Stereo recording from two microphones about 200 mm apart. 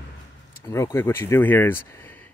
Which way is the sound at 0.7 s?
15° left (ahead or behind).